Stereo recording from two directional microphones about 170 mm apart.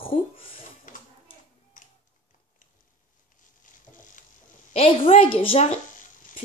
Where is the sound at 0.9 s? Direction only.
50° left (ahead or behind).